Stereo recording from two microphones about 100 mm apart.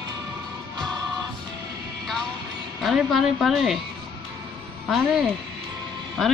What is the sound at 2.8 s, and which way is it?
Speech, 5° right (ahead or behind).